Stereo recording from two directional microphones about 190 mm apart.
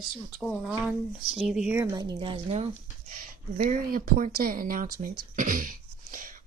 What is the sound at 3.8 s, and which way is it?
Speech, 45° right (ahead or behind).